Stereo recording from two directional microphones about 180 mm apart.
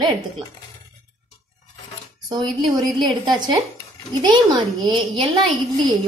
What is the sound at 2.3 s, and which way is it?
A woman's voice, 25° right (ahead or behind).